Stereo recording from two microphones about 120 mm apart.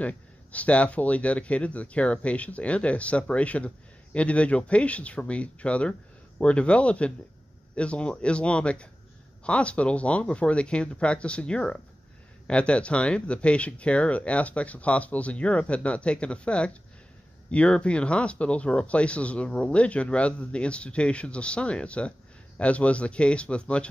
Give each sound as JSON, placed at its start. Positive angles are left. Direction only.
{"t": 0.0, "sound": "speech", "side_deg": 10}